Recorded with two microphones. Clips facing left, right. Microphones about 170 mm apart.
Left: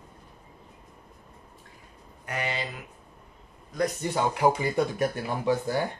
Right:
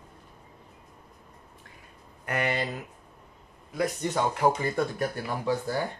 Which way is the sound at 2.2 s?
55° right (ahead or behind).